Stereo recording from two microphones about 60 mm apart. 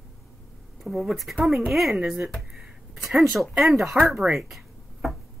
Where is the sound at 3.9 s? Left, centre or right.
Centre.